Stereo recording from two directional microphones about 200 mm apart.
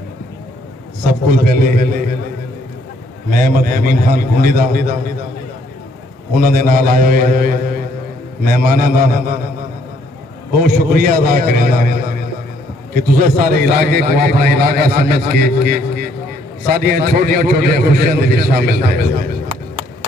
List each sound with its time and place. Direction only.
1.0 s a man's voice: 45° right (ahead or behind)
3.3 s a man's voice: 45° right (ahead or behind)
6.3 s a man's voice: 45° right (ahead or behind)
10.5 s a man's voice: 45° right (ahead or behind)